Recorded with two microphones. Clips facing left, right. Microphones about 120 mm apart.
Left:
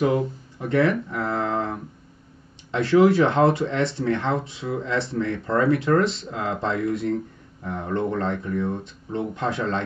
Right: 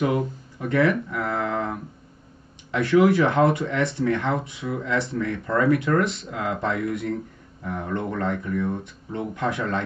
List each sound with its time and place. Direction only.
0.0 s speech: 25° left (ahead or behind)